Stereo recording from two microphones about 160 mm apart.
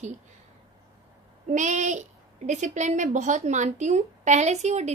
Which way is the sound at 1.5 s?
50° right (ahead or behind).